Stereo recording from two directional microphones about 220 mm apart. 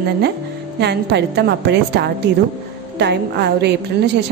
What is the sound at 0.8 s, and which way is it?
A woman's voice, 50° right (ahead or behind).